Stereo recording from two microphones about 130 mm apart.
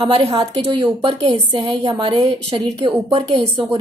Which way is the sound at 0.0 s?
35° right (ahead or behind).